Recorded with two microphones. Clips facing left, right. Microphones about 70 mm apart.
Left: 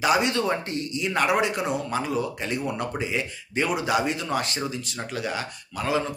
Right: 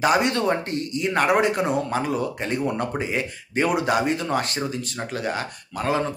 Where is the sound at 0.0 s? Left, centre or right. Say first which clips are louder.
Right 2 dB; right.